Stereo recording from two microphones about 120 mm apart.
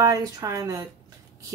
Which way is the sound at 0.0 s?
25° right (ahead or behind).